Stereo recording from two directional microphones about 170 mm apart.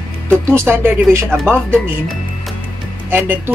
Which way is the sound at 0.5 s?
10° right (ahead or behind).